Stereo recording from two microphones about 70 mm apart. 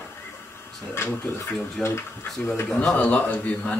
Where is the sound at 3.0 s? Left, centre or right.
Left.